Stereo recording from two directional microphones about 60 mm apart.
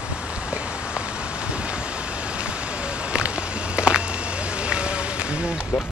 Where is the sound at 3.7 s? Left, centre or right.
Centre.